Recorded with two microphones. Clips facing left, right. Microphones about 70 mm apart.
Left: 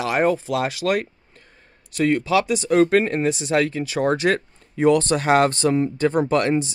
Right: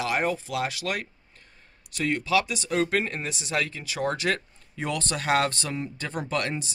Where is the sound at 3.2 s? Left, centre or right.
Left.